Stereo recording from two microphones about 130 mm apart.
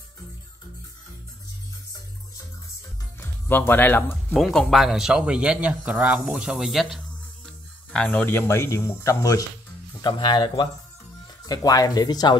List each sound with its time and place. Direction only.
3.2 s speech: 15° left (ahead or behind)
4.3 s a man's voice: centre (ahead or behind); by 9.5 s 25° left (ahead or behind)
10.0 s speech: 35° left (ahead or behind)